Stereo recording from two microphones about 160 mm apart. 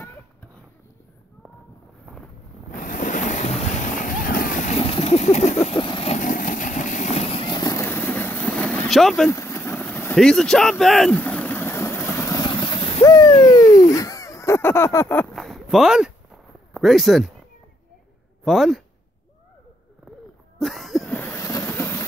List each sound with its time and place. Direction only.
2.7 s boat: 55° left (ahead or behind)
4.7 s vehicle: 35° left (ahead or behind)
6.1 s vehicle: 55° left (ahead or behind); by 9.3 s centre (ahead or behind)
9.3 s vehicle: 15° left (ahead or behind); by 13.0 s 35° left (ahead or behind)
13.0 s bird: 25° left (ahead or behind)
13.5 s a sound: 25° left (ahead or behind)
15.3 s a sound: centre (ahead or behind)
16.7 s speech: centre (ahead or behind)
18.4 s speech: centre (ahead or behind)
20.5 s cough: centre (ahead or behind)
21.2 s train: 15° left (ahead or behind)